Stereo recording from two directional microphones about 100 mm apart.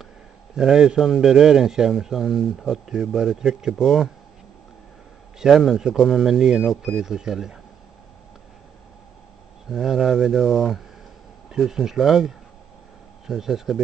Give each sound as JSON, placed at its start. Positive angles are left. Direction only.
{"t": 0.6, "sound": "a man's voice", "side_deg": -5}
{"t": 5.4, "sound": "a man's voice", "side_deg": 0}
{"t": 9.7, "sound": "a man's voice", "side_deg": -5}